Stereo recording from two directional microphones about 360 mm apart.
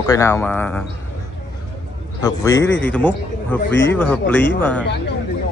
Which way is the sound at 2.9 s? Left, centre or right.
Centre.